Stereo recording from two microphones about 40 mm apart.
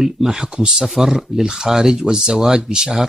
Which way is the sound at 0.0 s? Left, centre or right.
Centre.